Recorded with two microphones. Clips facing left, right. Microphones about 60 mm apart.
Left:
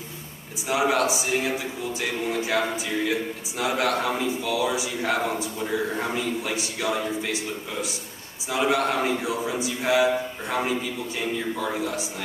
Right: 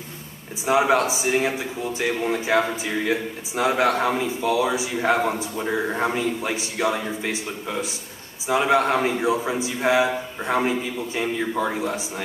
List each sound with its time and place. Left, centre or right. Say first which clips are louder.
0.7 s speech: right 3 dB; right